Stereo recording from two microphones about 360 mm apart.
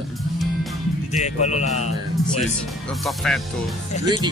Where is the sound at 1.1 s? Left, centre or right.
Centre.